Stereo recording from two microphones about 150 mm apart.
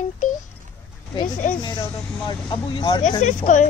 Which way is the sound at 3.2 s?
55° left (ahead or behind).